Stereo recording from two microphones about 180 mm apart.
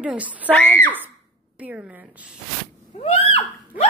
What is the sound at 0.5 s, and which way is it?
Speech, 10° left (ahead or behind).